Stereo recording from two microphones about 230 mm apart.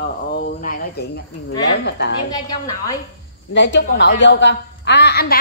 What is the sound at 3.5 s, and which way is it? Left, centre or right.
A woman's voice, left.